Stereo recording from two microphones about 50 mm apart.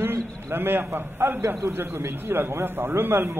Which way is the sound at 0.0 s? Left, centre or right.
Right.